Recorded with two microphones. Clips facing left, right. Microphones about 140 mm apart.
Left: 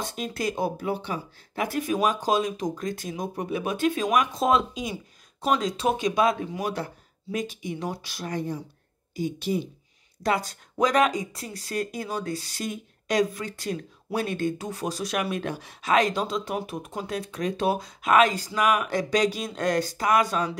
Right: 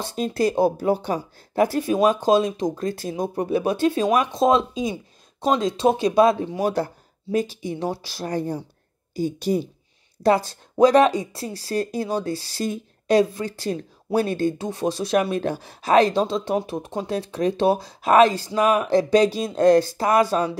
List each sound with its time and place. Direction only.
0.0 s speech: 35° right (ahead or behind)